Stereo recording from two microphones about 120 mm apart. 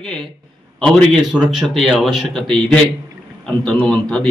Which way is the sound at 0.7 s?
5° left (ahead or behind).